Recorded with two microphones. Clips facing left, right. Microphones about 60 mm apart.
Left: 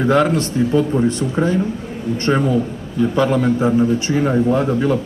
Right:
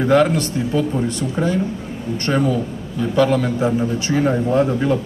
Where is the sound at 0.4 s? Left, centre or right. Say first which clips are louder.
Left 3 dB; left.